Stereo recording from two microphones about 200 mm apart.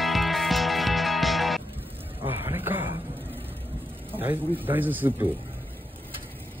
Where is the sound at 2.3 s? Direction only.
10° right (ahead or behind).